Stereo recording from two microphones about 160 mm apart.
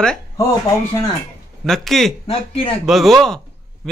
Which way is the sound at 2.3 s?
35° left (ahead or behind).